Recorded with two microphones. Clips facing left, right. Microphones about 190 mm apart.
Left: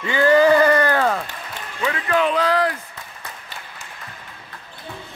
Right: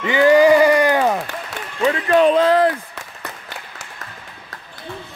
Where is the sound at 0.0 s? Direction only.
15° right (ahead or behind).